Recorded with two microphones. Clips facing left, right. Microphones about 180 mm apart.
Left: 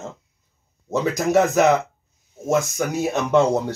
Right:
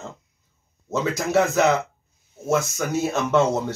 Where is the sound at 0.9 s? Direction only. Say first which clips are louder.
Left 3 dB; 15° left (ahead or behind).